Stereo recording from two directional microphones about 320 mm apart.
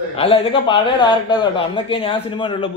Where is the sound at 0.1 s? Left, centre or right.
Centre.